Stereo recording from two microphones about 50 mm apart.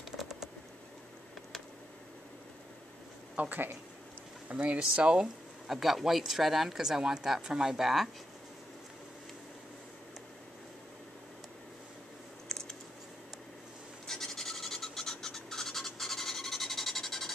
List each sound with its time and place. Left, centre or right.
0.2 s typing: centre
3.3 s speech: right
4.5 s speech: right
5.0 s speech: centre
5.7 s speech: centre
12.4 s computer keyboard: centre
14.0 s scratch: centre